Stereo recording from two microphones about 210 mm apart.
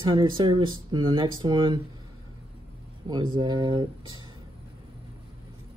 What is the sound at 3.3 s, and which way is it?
Speech, 20° right (ahead or behind).